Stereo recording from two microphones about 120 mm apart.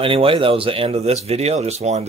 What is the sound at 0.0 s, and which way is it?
Speech, 50° right (ahead or behind).